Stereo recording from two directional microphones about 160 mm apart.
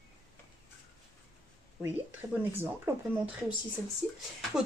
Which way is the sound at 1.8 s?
10° right (ahead or behind).